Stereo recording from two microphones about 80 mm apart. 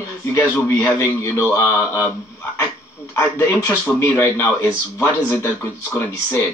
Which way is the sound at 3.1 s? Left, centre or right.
Left.